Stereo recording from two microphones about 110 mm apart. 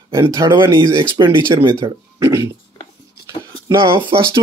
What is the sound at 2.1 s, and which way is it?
Speech, 25° right (ahead or behind).